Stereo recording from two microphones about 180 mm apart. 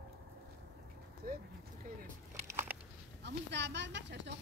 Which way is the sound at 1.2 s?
50° right (ahead or behind).